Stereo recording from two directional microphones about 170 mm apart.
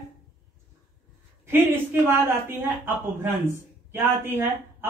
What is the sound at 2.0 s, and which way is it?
Speech, 15° right (ahead or behind).